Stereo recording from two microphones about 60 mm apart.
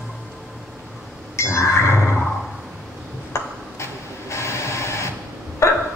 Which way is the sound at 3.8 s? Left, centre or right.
Left.